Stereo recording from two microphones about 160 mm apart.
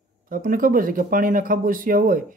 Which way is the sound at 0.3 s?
60° right (ahead or behind).